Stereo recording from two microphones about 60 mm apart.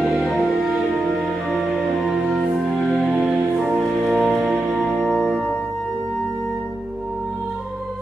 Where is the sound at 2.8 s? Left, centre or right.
Centre.